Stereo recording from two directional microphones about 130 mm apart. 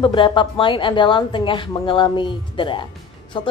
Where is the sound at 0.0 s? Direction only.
40° left (ahead or behind).